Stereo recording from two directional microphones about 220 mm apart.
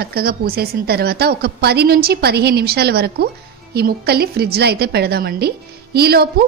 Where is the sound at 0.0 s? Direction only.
45° right (ahead or behind).